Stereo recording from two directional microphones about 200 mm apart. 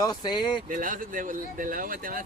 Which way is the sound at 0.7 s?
45° right (ahead or behind).